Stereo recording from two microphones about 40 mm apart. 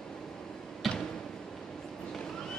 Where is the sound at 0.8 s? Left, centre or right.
Centre.